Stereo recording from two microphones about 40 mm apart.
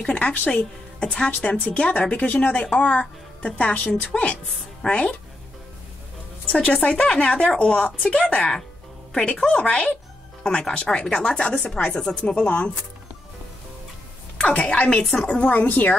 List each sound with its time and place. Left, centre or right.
0.0 s a woman's voice: left
2.5 s a woman's voice: left
6.4 s a woman's voice: left
8.4 s a woman's voice: centre; by 12.7 s left
14.5 s a woman's voice: left
15.2 s a woman's voice: left